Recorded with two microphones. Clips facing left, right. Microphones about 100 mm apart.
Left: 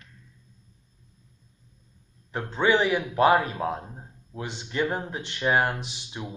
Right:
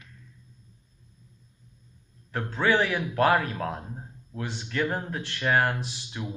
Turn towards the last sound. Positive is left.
turn(degrees=15)  # may be behind; listen again after turning